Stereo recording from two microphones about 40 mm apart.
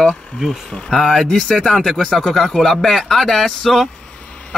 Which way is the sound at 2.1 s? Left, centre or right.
Centre.